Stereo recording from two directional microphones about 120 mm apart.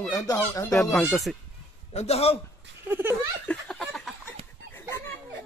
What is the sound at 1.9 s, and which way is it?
Speech, 60° left (ahead or behind).